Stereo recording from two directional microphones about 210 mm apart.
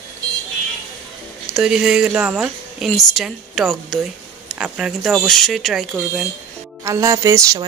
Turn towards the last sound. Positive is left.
turn(degrees=-15)  # may be behind; listen again after turning